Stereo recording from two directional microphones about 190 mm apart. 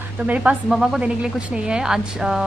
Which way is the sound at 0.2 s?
5° right (ahead or behind).